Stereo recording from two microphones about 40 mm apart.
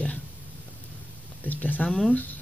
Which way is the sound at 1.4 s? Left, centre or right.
Left.